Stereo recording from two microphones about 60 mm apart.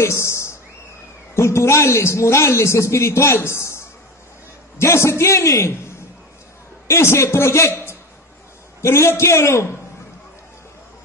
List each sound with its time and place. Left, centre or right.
0.0 s a sound: left
1.3 s a man's voice: left
6.9 s a man's voice: left